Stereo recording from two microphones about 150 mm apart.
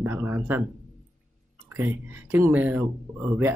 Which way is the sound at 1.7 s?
15° right (ahead or behind).